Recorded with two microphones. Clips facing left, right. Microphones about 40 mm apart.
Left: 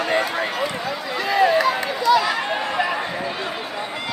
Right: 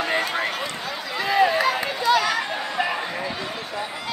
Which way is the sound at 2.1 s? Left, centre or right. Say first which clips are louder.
Left 3 dB; right.